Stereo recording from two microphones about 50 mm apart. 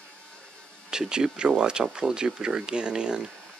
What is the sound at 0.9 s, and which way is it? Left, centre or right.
Speech, centre.